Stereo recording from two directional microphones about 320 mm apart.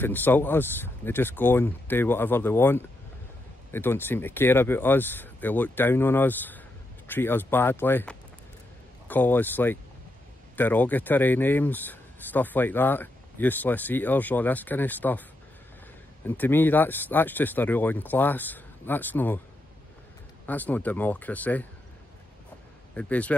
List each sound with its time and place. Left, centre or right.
0.0 s speech: centre
16.3 s speech: centre
20.4 s speech: centre
22.9 s speech: centre